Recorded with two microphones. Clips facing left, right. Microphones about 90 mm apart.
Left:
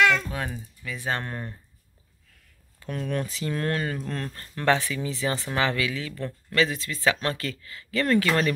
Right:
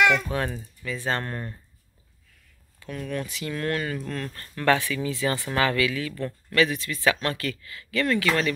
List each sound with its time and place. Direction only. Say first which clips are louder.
0.0 s music: even; 15° right (ahead or behind)
0.3 s speech: right 4 dB; 5° left (ahead or behind)
2.9 s speech: left 2 dB; 35° left (ahead or behind)